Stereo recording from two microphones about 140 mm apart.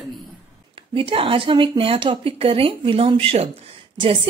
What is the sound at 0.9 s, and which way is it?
A woman's voice, 40° right (ahead or behind).